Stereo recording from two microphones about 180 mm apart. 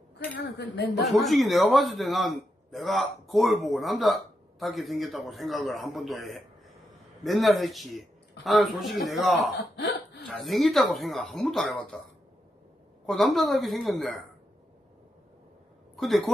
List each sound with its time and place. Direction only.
0.4 s a woman's voice: 70° left (ahead or behind)
1.0 s a man's voice: centre (ahead or behind)
9.6 s speech: 70° left (ahead or behind)
10.2 s a man's voice: centre (ahead or behind)
13.0 s a man's voice: centre (ahead or behind)
16.0 s a man's voice: centre (ahead or behind)